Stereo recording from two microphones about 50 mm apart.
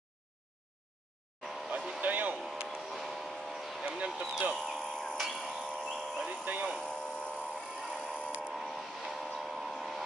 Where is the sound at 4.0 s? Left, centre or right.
Right.